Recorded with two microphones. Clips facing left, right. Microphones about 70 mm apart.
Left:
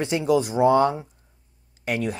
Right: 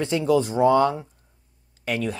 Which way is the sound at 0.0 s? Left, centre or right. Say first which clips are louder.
Even; centre.